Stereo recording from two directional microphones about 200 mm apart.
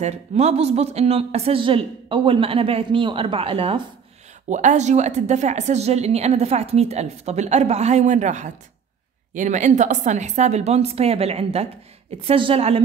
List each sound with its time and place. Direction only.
0.0 s a woman's voice: 35° right (ahead or behind)